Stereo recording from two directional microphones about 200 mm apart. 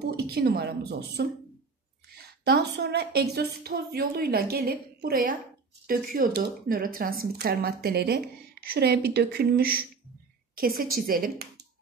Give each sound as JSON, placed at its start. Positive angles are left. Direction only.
{"t": 0.1, "sound": "speech", "side_deg": -55}